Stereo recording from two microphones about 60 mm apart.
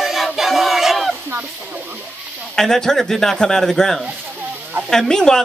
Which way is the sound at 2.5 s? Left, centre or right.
Centre.